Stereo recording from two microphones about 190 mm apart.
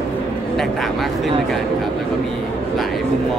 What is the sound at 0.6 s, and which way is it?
Speech, centre (ahead or behind).